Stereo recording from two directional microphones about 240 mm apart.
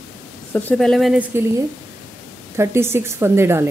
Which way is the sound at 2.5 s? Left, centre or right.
Centre.